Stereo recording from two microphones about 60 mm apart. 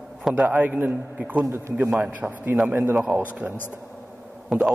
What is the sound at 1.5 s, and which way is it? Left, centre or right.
Speech, right.